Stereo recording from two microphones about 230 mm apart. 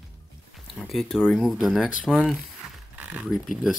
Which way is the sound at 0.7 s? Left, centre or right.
Centre.